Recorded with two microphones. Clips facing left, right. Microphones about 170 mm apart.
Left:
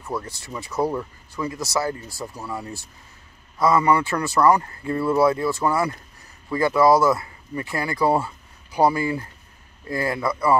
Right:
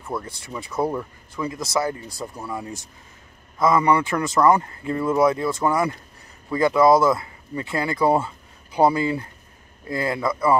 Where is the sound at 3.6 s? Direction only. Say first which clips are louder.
Even; 20° right (ahead or behind).